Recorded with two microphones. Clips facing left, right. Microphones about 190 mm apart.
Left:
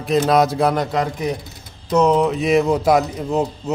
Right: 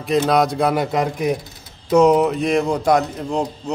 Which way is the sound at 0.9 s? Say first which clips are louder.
Right 2 dB; 15° right (ahead or behind).